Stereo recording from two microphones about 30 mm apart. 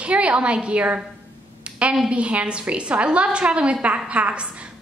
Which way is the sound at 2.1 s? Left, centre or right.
Right.